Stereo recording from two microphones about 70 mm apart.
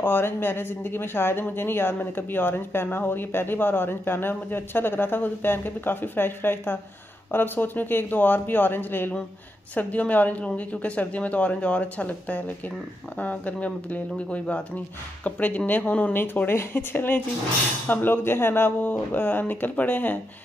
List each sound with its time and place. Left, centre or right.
0.0 s speech: left
16.2 s speech: left